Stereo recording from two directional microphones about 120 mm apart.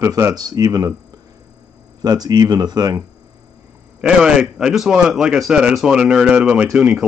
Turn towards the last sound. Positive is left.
turn(degrees=-10)  # may be behind; listen again after turning